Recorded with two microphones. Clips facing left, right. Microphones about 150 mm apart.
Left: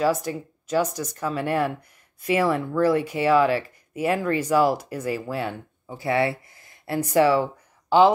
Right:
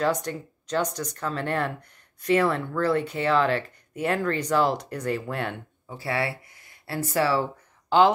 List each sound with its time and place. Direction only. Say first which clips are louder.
0.0 s speech: left 3 dB; 5° left (ahead or behind)
5.9 s speech: left 5 dB; 20° left (ahead or behind)